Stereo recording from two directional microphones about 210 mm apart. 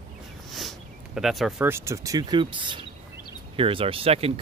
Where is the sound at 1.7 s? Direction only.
15° right (ahead or behind).